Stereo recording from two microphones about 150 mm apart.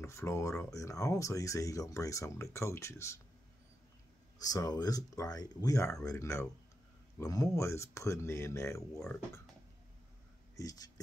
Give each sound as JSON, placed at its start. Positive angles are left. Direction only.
{"t": 0.0, "sound": "speech", "side_deg": 20}
{"t": 4.4, "sound": "speech", "side_deg": 25}
{"t": 10.5, "sound": "a sound", "side_deg": 20}